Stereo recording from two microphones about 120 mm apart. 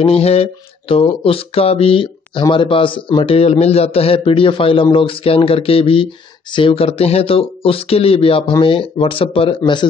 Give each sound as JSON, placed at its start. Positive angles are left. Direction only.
{"t": 0.0, "sound": "speech", "side_deg": 55}